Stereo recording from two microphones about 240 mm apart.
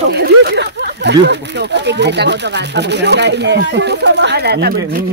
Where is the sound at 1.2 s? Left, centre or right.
Right.